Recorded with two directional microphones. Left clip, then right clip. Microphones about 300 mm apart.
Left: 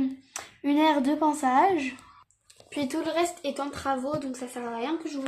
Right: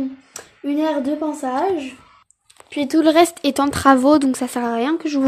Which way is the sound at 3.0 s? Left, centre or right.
Right.